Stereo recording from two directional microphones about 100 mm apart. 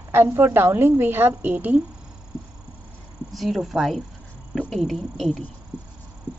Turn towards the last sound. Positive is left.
turn(degrees=0)  # may be behind; listen again after turning